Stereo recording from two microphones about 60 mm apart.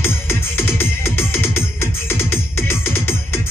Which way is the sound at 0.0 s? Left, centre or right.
Left.